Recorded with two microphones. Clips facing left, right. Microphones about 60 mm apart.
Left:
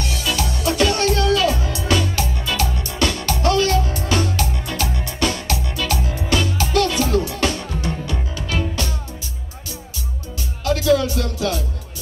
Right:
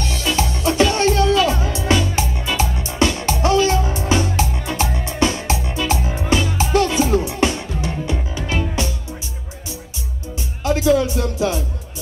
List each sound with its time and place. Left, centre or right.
0.2 s music: right
10.6 s music: right